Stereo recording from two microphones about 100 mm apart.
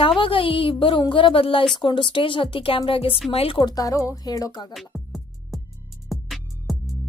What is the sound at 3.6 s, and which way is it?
A woman's voice, 35° left (ahead or behind).